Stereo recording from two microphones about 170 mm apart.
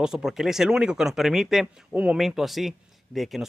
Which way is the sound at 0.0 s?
5° right (ahead or behind).